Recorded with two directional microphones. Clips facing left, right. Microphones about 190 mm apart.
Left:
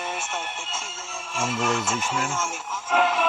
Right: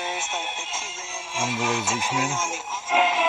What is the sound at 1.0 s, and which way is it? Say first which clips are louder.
Music: even; 10° right (ahead or behind).